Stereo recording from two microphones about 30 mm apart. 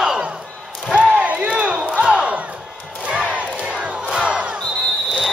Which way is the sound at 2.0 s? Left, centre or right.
Right.